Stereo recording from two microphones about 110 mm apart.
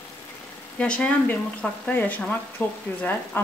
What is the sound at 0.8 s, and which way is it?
A woman's voice, 10° left (ahead or behind).